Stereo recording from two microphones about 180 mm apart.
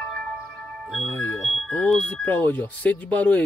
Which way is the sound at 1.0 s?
10° left (ahead or behind).